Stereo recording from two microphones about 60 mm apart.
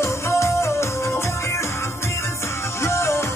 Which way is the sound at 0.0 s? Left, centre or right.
Left.